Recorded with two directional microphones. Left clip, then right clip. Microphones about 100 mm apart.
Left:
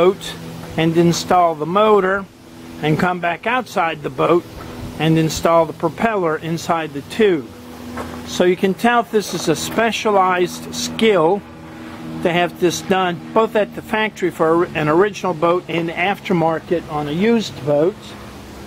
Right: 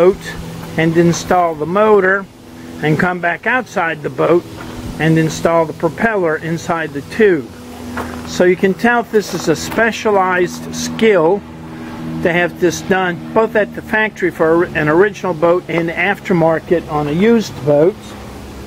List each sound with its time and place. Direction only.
0.7 s speech: 35° left (ahead or behind)
16.4 s speech: 5° left (ahead or behind)